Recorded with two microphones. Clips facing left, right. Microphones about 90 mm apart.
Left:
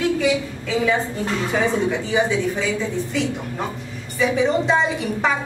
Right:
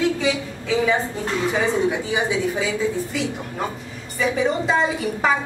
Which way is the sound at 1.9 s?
10° right (ahead or behind).